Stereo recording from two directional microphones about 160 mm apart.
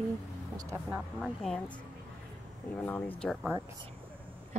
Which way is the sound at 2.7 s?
10° left (ahead or behind).